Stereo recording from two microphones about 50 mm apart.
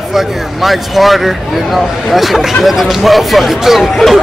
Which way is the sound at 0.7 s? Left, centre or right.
Centre.